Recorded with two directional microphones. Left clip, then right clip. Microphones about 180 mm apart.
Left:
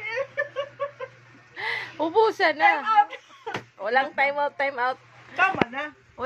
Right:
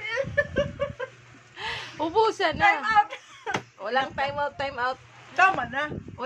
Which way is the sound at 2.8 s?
15° right (ahead or behind).